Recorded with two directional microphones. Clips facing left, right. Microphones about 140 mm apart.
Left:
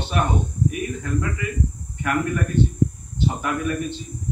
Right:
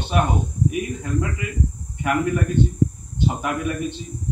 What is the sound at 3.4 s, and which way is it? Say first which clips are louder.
Speech: even; 20° right (ahead or behind).